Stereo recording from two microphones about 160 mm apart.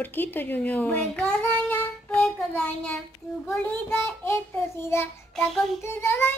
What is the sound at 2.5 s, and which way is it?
Child singing, 5° left (ahead or behind).